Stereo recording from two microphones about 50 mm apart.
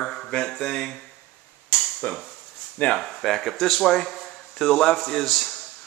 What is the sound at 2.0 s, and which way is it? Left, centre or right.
Speech, left.